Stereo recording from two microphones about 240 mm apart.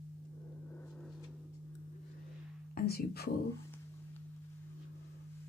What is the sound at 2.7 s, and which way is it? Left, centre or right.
Speech, left.